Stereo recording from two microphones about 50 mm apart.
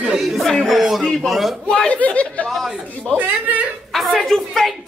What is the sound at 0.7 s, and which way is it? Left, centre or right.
Speech, centre.